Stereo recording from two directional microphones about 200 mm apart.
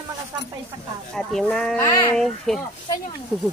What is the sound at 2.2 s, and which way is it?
Speech, centre (ahead or behind).